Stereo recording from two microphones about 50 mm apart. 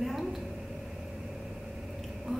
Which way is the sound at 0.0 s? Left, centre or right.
Centre.